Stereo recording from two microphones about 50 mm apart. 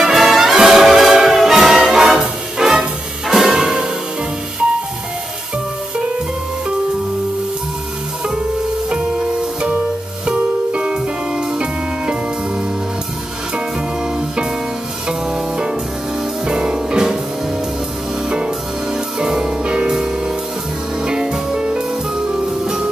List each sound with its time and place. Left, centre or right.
0.1 s music: centre
10.2 s music: right
15.0 s music: centre
19.1 s music: centre